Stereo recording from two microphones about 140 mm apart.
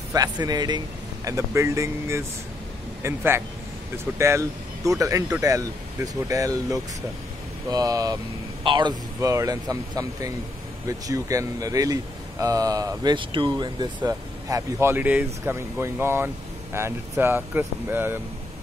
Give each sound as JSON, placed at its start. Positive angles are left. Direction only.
{"t": 0.1, "sound": "speech", "side_deg": -25}
{"t": 9.3, "sound": "speech", "side_deg": -25}